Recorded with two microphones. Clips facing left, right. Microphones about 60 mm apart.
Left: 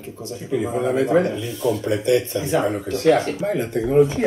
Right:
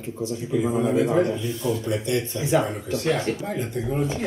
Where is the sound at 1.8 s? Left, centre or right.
Left.